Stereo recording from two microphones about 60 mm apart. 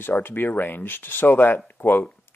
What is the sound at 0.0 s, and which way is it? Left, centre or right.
Speech, left.